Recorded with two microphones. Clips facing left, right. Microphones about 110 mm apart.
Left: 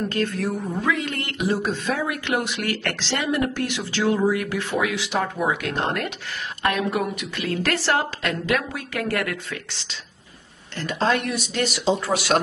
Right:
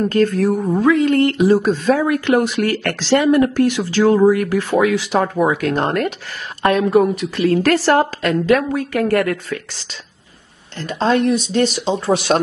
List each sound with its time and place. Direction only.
0.1 s speech: 40° right (ahead or behind)
10.8 s speech: 30° right (ahead or behind)